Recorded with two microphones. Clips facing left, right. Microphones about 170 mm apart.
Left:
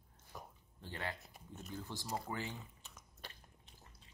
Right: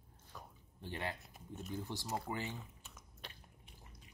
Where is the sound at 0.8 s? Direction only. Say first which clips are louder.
Right 2 dB; 15° right (ahead or behind).